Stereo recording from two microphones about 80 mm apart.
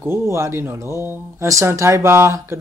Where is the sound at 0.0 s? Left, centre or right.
Right.